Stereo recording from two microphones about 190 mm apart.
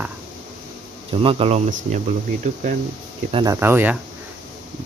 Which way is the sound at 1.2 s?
30° right (ahead or behind).